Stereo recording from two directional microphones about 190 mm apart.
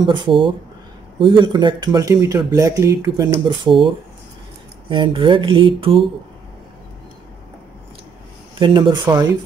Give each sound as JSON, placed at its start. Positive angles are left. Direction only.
{"t": 0.0, "sound": "speech", "side_deg": -25}
{"t": 8.5, "sound": "speech", "side_deg": -25}